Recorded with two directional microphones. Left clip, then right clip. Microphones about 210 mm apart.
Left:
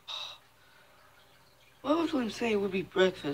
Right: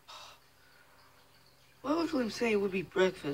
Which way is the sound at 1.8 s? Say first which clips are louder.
Left 3 dB; 5° left (ahead or behind).